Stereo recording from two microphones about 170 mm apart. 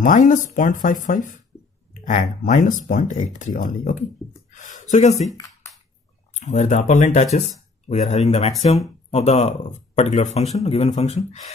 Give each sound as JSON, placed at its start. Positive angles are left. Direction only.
{"t": 0.0, "sound": "speech", "side_deg": 50}
{"t": 4.5, "sound": "a sound", "side_deg": 45}
{"t": 4.9, "sound": "speech", "side_deg": 40}
{"t": 6.4, "sound": "speech", "side_deg": 45}